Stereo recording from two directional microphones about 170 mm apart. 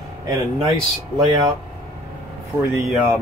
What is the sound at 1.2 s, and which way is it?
Speech, 25° right (ahead or behind).